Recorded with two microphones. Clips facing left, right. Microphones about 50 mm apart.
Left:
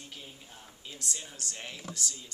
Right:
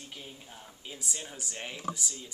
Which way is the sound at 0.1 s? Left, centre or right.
Centre.